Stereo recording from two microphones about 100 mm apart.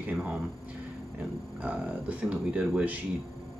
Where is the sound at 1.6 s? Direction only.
15° right (ahead or behind).